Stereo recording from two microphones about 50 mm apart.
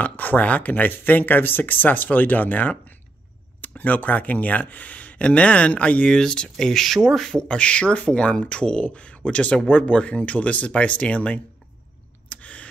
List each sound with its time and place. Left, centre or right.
0.1 s speech: left
6.0 s speech: centre
12.3 s a sound: left